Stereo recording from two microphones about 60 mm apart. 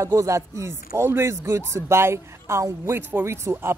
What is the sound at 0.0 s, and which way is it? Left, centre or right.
A man's voice, right.